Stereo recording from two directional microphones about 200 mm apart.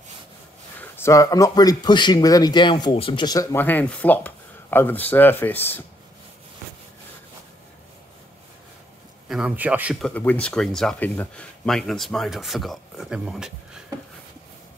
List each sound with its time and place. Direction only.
0.7 s speech: 10° left (ahead or behind)
3.5 s speech: 10° left (ahead or behind)
9.3 s speech: 5° right (ahead or behind)